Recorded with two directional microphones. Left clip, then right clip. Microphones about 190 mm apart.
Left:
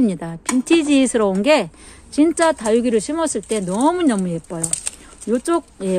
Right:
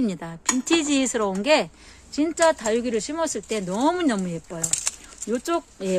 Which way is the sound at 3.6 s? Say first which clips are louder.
Left 5 dB; centre (ahead or behind).